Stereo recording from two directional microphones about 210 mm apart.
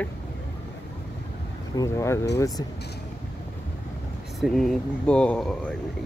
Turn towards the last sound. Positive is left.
turn(degrees=5)  # may be behind; listen again after turning